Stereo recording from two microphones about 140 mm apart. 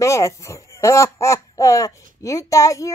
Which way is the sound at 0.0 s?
20° left (ahead or behind).